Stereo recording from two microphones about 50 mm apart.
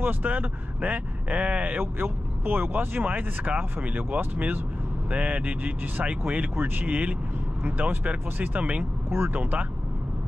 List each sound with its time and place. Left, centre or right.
0.0 s speech: right
1.8 s speech: right